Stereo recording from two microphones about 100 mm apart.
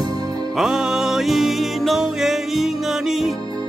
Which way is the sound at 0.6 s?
5° right (ahead or behind).